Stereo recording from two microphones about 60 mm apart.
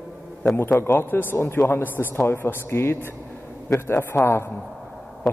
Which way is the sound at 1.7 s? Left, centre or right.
Left.